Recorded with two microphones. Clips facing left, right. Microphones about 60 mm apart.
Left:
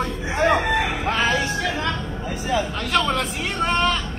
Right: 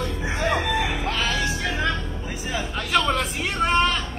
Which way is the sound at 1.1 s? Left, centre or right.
Left.